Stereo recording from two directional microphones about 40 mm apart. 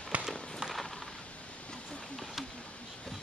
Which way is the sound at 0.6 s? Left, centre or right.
Centre.